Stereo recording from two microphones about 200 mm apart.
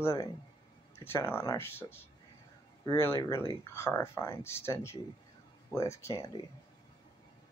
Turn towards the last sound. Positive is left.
turn(degrees=15)  # may be behind; listen again after turning